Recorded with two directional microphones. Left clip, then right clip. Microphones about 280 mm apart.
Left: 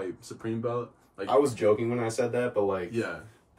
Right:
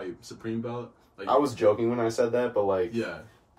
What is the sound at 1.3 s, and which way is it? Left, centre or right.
Speech, centre.